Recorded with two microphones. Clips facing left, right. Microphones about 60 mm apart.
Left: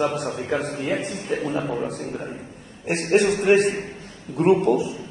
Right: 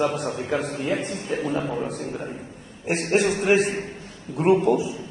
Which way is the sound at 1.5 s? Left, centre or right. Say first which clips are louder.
Left 1 dB; centre.